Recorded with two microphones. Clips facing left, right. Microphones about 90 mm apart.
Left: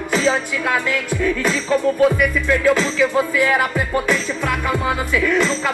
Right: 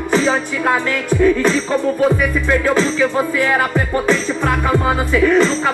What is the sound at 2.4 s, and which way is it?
Speech, 20° right (ahead or behind).